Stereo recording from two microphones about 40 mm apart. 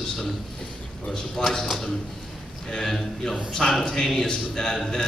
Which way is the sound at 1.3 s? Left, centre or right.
Centre.